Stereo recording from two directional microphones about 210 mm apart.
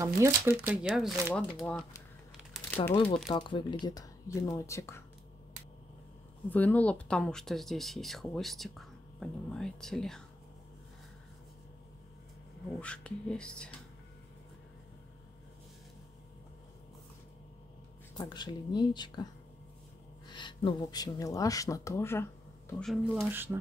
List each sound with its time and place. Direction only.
0.0 s speech: 15° right (ahead or behind); by 1.9 s 5° left (ahead or behind)
2.5 s crumpling: 10° left (ahead or behind)
3.3 s speech: 25° left (ahead or behind)
6.5 s speech: 10° left (ahead or behind)
12.8 s speech: 5° left (ahead or behind)
18.1 s speech: 20° left (ahead or behind)
20.2 s speech: 20° left (ahead or behind)
22.7 s speech: centre (ahead or behind)